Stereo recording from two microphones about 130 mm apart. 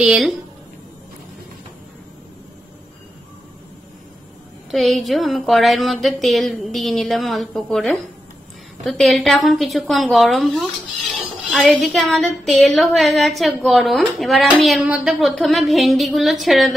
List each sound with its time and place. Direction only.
0.0 s a woman's voice: 5° right (ahead or behind)
4.6 s a woman's voice: centre (ahead or behind)